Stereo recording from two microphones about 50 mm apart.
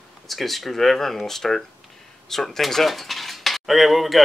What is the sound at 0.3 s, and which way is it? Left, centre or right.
Cutlery, centre.